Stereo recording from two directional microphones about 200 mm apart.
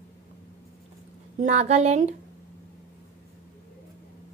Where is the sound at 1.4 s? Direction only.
35° right (ahead or behind).